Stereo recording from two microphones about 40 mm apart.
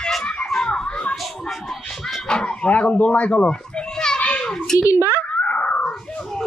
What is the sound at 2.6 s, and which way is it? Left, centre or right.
Speech, left.